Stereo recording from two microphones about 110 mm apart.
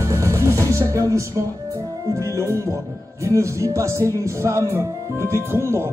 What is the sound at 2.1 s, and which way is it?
Speech, 30° right (ahead or behind).